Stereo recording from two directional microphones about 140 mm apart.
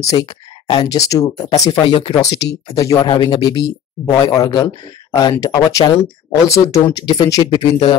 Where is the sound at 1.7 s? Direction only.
35° left (ahead or behind).